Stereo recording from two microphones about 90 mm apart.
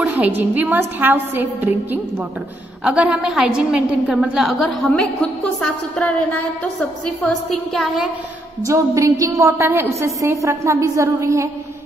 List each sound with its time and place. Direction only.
0.0 s a woman's voice: 15° right (ahead or behind)
2.8 s a woman's voice: 10° right (ahead or behind)
6.6 s a woman's voice: 15° left (ahead or behind)
7.7 s a woman's voice: centre (ahead or behind)
8.6 s a woman's voice: 35° right (ahead or behind)